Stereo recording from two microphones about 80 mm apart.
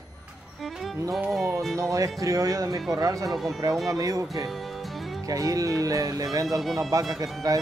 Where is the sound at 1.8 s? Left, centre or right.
Right.